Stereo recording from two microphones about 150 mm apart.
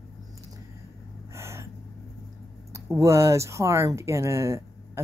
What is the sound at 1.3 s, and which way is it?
Gasp, 20° right (ahead or behind).